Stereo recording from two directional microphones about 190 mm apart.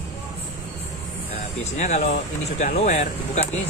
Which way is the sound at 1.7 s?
35° left (ahead or behind).